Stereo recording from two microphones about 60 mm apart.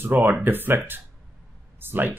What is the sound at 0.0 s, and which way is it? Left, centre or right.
Speech, right.